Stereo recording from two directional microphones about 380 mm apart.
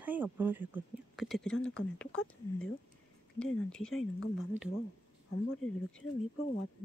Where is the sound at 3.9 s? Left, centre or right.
Left.